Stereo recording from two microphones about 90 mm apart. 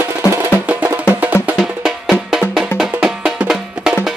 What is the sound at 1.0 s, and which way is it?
Music, 20° right (ahead or behind).